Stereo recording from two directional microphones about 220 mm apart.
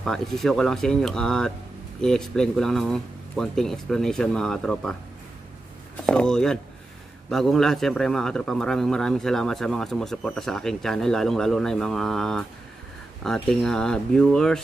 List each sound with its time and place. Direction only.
0.0 s a man's voice: centre (ahead or behind)
6.0 s a man's voice: 5° left (ahead or behind)